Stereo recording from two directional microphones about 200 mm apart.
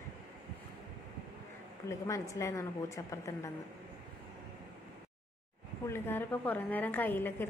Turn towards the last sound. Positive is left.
turn(degrees=10)  # may be behind; listen again after turning